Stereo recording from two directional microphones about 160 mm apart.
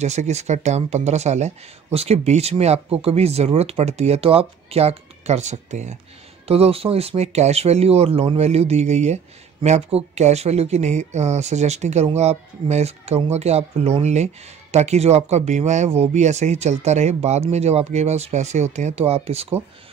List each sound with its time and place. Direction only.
0.0 s speech: 45° right (ahead or behind)